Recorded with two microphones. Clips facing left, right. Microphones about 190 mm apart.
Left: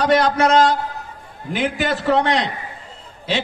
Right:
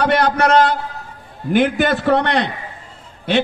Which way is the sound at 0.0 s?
60° right (ahead or behind).